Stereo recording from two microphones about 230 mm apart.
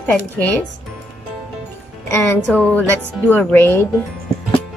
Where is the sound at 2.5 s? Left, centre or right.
Centre.